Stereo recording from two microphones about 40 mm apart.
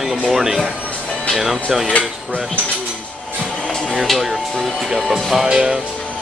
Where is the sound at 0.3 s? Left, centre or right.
Centre.